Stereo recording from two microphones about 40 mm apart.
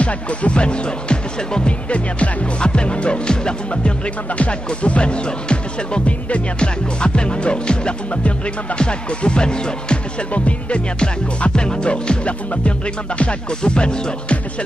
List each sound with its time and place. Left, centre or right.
0.0 s speech: left
10.3 s music: left
11.0 s speech: left